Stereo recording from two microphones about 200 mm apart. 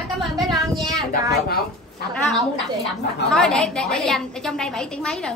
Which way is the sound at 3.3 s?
Centre (ahead or behind).